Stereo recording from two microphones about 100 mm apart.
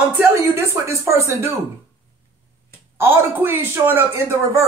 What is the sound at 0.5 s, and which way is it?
A man's voice, 25° right (ahead or behind).